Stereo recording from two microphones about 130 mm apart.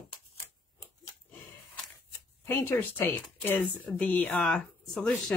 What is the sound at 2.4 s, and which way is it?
Speech, 15° left (ahead or behind).